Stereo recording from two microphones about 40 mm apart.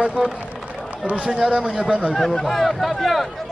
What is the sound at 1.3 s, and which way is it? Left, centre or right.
Speech, centre.